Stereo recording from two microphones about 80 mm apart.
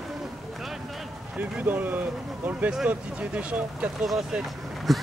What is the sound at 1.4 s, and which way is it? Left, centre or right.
Speech, right.